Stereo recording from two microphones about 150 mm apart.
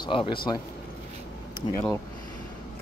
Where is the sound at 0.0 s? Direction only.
35° left (ahead or behind).